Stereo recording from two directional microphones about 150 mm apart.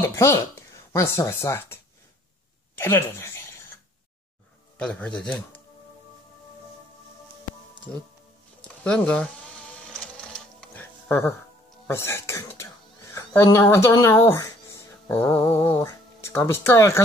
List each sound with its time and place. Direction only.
0.0 s speech: 20° left (ahead or behind)
2.8 s speech: 15° left (ahead or behind)
4.7 s a man's voice: 5° left (ahead or behind)
8.6 s speech: 5° left (ahead or behind)
9.9 s sewing machine: 5° left (ahead or behind)
11.9 s a sound: 15° left (ahead or behind)
15.1 s speech: 15° left (ahead or behind)